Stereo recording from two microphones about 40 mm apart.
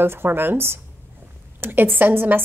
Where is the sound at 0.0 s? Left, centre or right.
Right.